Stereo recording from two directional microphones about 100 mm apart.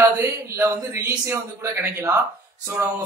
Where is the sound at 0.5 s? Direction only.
25° right (ahead or behind).